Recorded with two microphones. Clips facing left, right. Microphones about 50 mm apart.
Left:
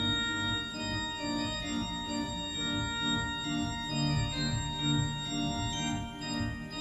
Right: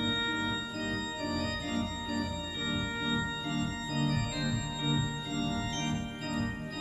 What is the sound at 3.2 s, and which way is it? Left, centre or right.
Organ, centre.